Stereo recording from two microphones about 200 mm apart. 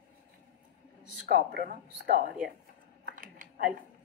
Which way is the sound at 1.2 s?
45° right (ahead or behind).